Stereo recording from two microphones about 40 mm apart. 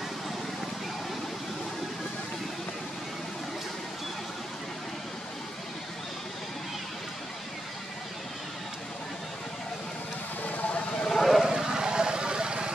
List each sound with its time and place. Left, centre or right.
10.4 s a sound: left
11.1 s vehicle: centre
11.4 s vehicle: centre